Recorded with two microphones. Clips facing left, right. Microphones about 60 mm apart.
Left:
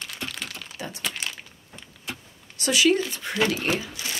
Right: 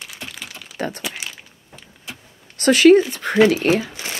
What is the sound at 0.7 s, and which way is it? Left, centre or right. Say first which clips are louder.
Speech: right 12 dB; right.